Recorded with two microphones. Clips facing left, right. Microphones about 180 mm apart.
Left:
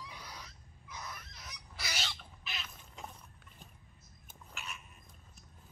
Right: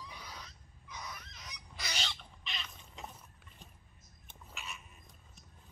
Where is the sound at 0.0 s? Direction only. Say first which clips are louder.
Even; 10° left (ahead or behind).